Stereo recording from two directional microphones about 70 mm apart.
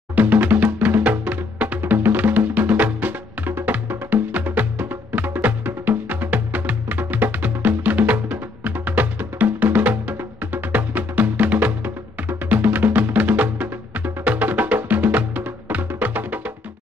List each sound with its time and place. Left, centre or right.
0.1 s music: right